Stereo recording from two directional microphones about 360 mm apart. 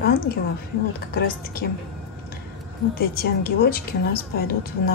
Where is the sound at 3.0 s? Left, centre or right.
Left.